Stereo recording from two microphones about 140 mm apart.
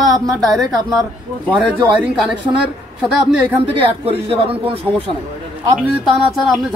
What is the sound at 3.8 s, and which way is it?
Speech, 40° right (ahead or behind).